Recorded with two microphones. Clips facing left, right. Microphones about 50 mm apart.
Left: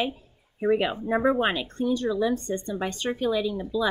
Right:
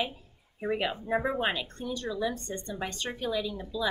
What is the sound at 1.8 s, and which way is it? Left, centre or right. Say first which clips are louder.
A woman's voice: left 8 dB; left.